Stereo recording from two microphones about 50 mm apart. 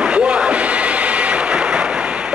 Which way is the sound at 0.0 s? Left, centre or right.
Right.